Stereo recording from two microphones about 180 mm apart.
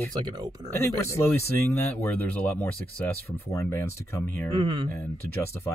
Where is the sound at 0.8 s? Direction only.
15° left (ahead or behind).